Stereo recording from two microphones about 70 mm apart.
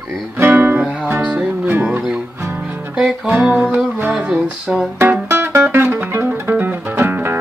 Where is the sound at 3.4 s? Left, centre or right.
Centre.